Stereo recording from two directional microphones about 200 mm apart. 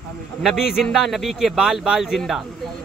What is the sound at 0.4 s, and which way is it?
Speech, centre (ahead or behind).